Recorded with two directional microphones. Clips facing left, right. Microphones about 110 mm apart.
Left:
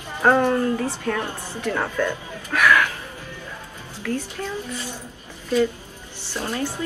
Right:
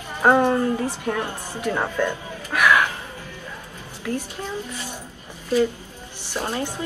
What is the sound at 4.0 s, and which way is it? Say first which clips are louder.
Speech: left 1 dB; 15° right (ahead or behind).